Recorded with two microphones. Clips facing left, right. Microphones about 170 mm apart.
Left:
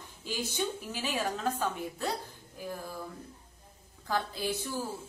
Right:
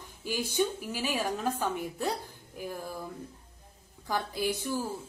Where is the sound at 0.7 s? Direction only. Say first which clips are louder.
Right 2 dB; 10° right (ahead or behind).